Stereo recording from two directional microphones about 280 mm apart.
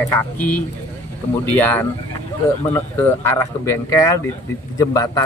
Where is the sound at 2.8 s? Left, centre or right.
Centre.